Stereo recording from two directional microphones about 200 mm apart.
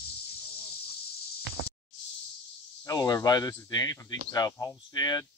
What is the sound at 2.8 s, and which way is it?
Speech, 15° left (ahead or behind).